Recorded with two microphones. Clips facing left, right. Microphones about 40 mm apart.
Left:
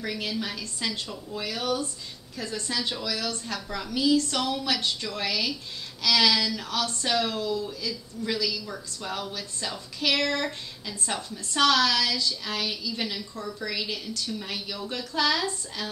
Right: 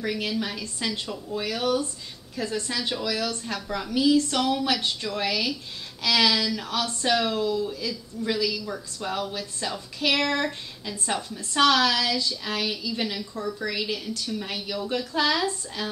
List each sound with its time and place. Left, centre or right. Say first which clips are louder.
0.0 s a woman's voice: right 3 dB; centre